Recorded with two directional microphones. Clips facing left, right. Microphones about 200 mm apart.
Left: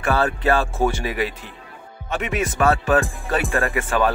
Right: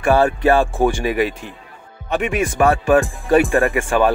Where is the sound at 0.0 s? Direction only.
15° right (ahead or behind).